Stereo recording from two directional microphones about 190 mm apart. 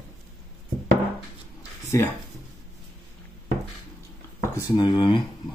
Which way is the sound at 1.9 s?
15° left (ahead or behind).